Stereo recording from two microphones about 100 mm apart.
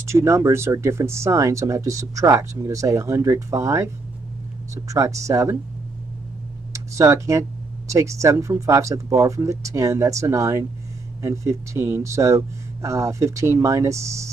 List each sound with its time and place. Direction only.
0.0 s speech: 30° right (ahead or behind)
6.7 s a sound: 30° right (ahead or behind)
7.9 s speech: 30° right (ahead or behind)